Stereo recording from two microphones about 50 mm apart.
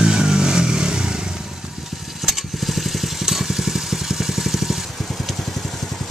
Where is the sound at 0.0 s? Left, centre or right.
Centre.